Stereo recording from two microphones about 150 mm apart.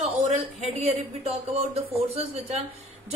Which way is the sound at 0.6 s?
40° right (ahead or behind).